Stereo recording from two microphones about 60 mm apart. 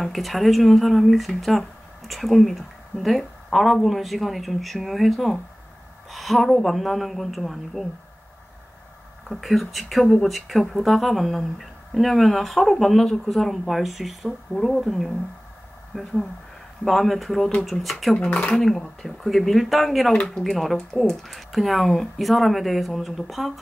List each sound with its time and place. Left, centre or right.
0.0 s speech: centre
9.3 s speech: centre
20.2 s speech: centre